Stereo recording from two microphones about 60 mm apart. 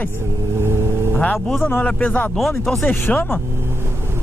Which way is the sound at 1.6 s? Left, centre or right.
Left.